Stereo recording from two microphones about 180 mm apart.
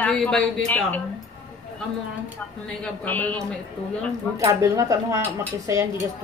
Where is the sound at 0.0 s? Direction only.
5° left (ahead or behind).